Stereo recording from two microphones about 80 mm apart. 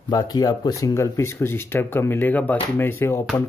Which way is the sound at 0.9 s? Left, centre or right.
Left.